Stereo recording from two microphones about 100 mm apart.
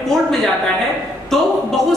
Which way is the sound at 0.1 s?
Centre (ahead or behind).